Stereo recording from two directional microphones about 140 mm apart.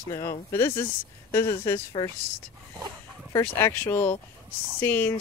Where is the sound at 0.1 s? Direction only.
20° left (ahead or behind).